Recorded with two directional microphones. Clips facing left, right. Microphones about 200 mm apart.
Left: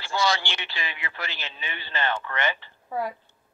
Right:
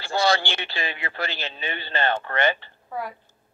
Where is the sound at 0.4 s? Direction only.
35° right (ahead or behind).